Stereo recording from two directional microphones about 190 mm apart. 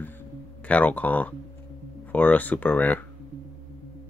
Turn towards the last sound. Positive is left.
turn(degrees=10)  # may be behind; listen again after turning